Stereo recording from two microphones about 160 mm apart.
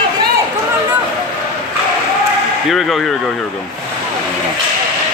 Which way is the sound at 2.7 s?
Centre (ahead or behind).